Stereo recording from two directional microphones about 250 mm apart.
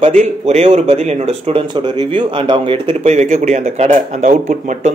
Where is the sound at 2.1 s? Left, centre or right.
Right.